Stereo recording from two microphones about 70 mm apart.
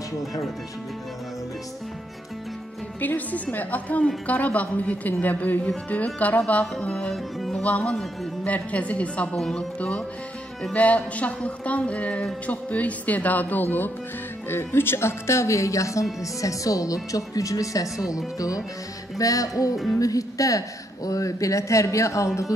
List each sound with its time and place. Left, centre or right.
0.2 s speech: centre
3.0 s music: left
7.3 s music: centre
7.6 s music: centre
14.5 s a woman's voice: left
18.1 s music: left
20.0 s a woman's voice: left